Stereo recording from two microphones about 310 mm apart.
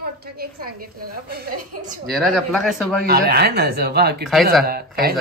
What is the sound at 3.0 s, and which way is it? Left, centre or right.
A woman's voice, right.